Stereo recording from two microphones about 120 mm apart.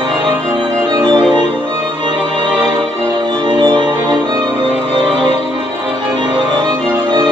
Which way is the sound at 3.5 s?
40° right (ahead or behind).